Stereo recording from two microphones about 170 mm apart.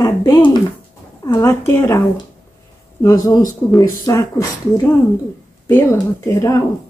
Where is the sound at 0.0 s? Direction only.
20° left (ahead or behind).